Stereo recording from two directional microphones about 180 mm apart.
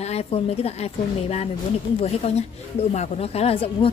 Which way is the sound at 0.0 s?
35° left (ahead or behind).